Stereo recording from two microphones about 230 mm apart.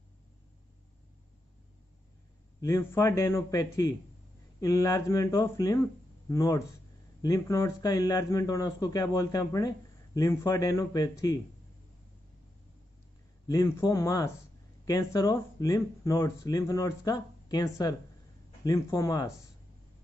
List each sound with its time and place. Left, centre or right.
2.6 s a man's voice: centre
13.5 s a man's voice: centre